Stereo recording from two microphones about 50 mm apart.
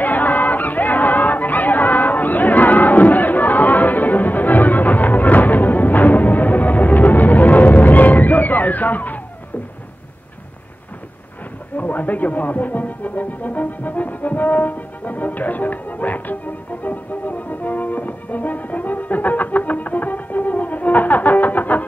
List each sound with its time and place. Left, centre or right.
0.0 s crowd: left
11.7 s music: left